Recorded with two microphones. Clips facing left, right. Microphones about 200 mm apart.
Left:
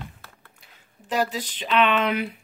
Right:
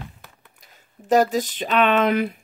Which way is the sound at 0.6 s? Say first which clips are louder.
Right 9 dB; 45° right (ahead or behind).